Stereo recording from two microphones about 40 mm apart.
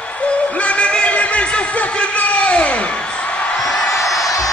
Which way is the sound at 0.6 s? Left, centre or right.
Left.